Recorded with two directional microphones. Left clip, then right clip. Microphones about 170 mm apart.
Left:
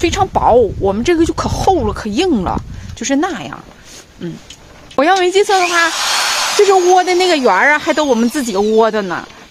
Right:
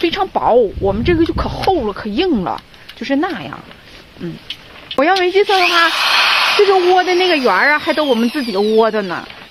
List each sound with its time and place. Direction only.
0.0 s speech: 30° left (ahead or behind)
4.9 s speech: 20° left (ahead or behind)
5.9 s a sound: 35° left (ahead or behind)
7.0 s speech: 20° left (ahead or behind)